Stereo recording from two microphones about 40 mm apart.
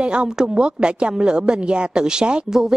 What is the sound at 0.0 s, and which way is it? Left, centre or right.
A woman's voice, right.